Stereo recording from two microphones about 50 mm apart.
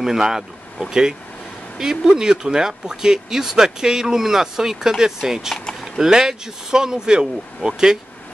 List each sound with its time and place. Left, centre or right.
0.0 s speech: centre